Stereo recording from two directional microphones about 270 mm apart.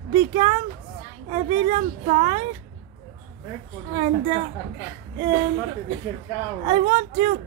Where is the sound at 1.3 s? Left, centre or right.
Right.